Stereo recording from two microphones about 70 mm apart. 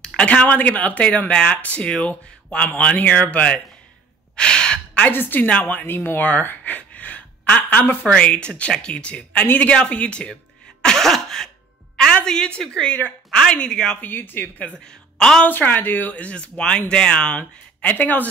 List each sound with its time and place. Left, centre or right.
0.0 s a woman's voice: centre
10.8 s throat clearing: centre
12.3 s speech: centre
14.0 s speech: left
14.9 s a woman's voice: centre
15.4 s speech: left